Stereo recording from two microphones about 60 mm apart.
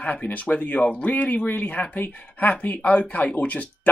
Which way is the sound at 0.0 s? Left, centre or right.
Left.